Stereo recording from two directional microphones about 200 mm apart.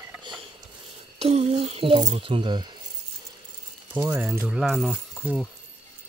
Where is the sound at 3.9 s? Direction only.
15° right (ahead or behind).